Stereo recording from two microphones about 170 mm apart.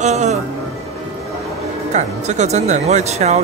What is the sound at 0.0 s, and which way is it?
Speech, 40° right (ahead or behind).